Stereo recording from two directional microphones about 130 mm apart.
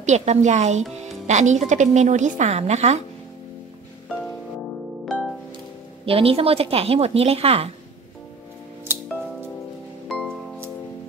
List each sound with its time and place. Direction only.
0.0 s speech: 60° right (ahead or behind)
6.0 s a woman's voice: 45° right (ahead or behind)
10.0 s music: centre (ahead or behind)